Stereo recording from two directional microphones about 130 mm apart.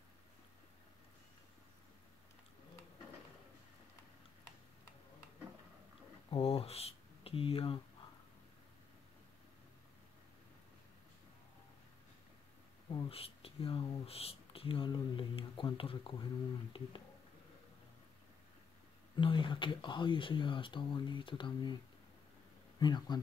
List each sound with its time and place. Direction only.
6.3 s speech: 50° left (ahead or behind)
12.9 s speech: 45° left (ahead or behind)
19.1 s speech: 40° left (ahead or behind)
22.8 s speech: 35° left (ahead or behind)